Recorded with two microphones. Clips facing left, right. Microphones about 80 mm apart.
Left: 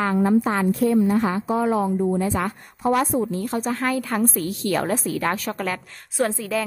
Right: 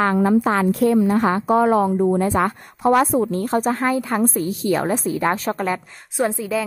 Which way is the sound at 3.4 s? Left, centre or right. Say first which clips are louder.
Right 5 dB; right.